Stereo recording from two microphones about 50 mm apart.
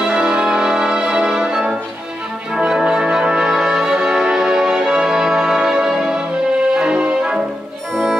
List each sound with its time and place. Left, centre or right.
0.0 s music: centre
7.9 s music: centre